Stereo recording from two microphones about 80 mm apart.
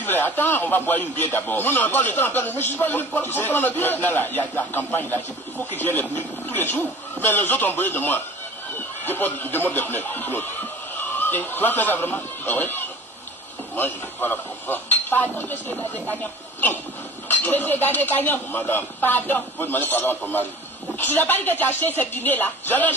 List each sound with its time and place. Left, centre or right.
0.0 s a man's voice: left